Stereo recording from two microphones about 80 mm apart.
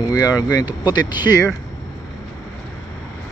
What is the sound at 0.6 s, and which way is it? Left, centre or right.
Speech, left.